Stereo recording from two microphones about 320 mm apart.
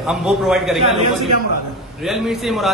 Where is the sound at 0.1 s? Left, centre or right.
Centre.